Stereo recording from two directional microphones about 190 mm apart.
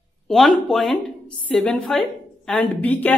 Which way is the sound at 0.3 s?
Centre (ahead or behind).